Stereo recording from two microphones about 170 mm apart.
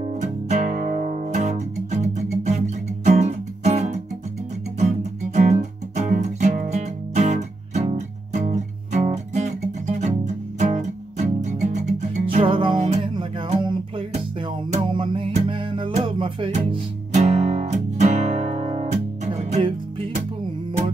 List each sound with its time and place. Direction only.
0.0 s music: 45° right (ahead or behind)
17.1 s music: 45° right (ahead or behind)